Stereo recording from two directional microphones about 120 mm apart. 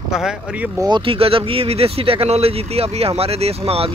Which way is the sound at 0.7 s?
40° right (ahead or behind).